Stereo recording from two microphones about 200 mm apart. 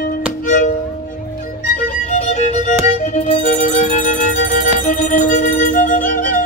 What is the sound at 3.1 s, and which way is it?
Music, 40° left (ahead or behind).